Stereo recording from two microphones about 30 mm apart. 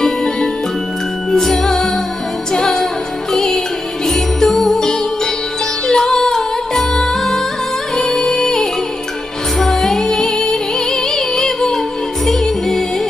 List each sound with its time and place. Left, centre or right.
1.3 s music: centre